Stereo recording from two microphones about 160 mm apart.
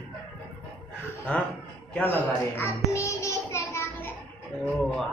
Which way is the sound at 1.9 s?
10° left (ahead or behind).